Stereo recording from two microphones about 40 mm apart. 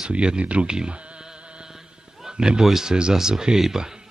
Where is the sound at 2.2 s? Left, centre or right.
Centre.